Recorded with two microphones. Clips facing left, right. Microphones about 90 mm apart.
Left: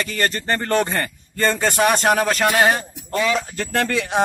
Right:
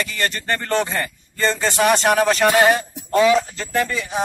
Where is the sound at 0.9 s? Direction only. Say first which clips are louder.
Left 1 dB; 55° left (ahead or behind).